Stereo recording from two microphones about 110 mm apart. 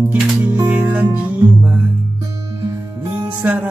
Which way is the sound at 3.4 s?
15° right (ahead or behind).